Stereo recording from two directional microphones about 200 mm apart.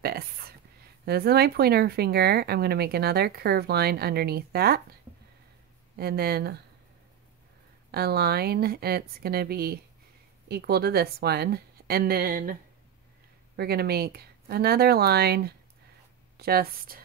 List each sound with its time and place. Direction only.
0.0 s a sound: 50° right (ahead or behind)
1.0 s speech: 50° right (ahead or behind)
5.9 s speech: 50° right (ahead or behind)
7.9 s speech: 50° right (ahead or behind)
13.6 s speech: 50° right (ahead or behind)